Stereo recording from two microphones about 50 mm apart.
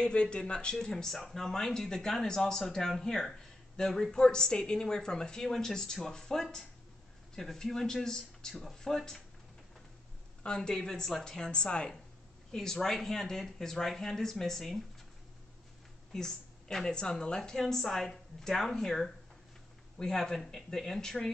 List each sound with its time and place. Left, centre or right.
0.0 s a woman's voice: left
10.4 s a woman's voice: centre
16.1 s a woman's voice: centre